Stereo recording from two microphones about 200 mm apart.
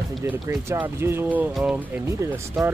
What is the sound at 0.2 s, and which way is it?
Speech, 15° right (ahead or behind).